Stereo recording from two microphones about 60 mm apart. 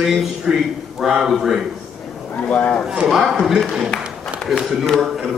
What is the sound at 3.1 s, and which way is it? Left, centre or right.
A man's voice, centre.